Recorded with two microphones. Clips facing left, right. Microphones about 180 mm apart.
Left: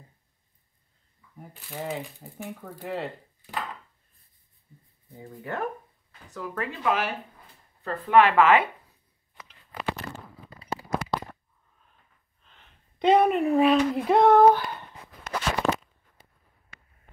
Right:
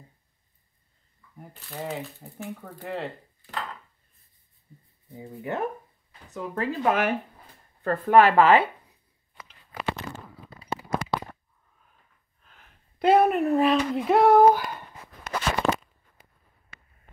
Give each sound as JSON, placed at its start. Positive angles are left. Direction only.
{"t": 1.3, "sound": "speech", "side_deg": 5}
{"t": 5.4, "sound": "speech", "side_deg": -20}
{"t": 6.8, "sound": "speech", "side_deg": -50}
{"t": 10.9, "sound": "a sound", "side_deg": 0}
{"t": 12.4, "sound": "speech", "side_deg": -5}
{"t": 15.2, "sound": "a sound", "side_deg": 0}